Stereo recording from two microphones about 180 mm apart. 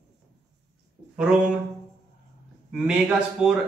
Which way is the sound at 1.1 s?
5° right (ahead or behind).